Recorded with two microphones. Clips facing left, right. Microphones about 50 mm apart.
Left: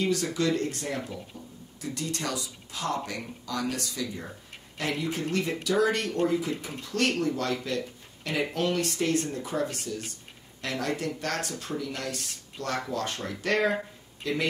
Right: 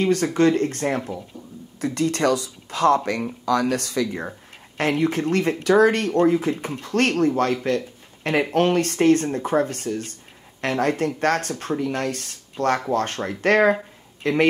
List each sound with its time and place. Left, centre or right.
0.0 s speech: right